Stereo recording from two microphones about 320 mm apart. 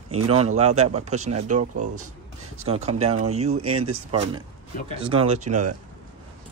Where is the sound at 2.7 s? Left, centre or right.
Centre.